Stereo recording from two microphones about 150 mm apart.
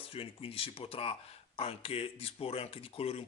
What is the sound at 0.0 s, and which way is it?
Speech, 40° left (ahead or behind).